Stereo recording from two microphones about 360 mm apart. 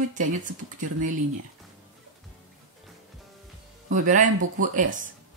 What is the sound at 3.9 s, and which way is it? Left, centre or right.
Speech, right.